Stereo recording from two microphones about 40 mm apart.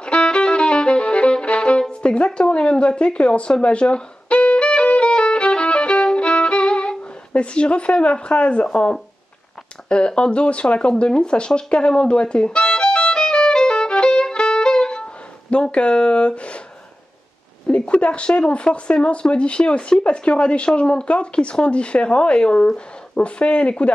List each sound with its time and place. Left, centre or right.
0.0 s violin: left
8.7 s speech: left
12.4 s violin: centre
15.5 s speech: left
17.6 s speech: left